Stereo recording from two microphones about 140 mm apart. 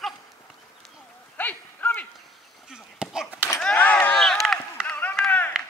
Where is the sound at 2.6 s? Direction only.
5° right (ahead or behind).